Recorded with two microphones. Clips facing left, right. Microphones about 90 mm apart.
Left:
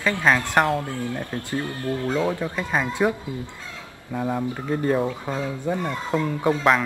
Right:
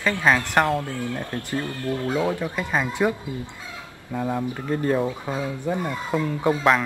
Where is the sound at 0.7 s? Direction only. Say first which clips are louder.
Even; 15° left (ahead or behind).